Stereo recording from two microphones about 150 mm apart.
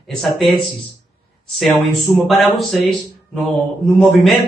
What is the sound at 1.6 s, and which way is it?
Speech, centre (ahead or behind).